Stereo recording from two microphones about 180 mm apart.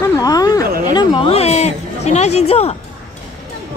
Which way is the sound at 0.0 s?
20° left (ahead or behind).